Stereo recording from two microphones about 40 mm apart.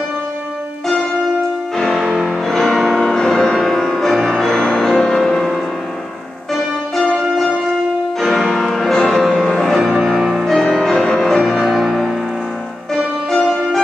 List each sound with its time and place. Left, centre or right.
2.4 s music: centre
4.6 s music: centre
7.0 s music: centre
8.2 s music: centre
10.4 s music: centre
11.5 s music: centre